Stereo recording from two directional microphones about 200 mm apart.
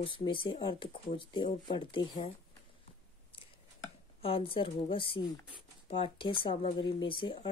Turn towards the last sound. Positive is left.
turn(degrees=25)  # may be behind; listen again after turning